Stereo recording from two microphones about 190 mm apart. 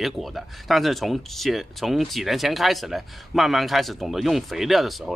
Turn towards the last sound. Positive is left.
turn(degrees=0)  # may be behind; listen again after turning